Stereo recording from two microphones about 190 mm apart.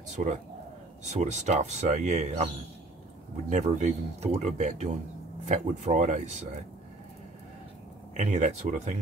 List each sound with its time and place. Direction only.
0.1 s speech: 40° right (ahead or behind)
3.4 s speech: 40° right (ahead or behind)
8.2 s speech: 35° right (ahead or behind)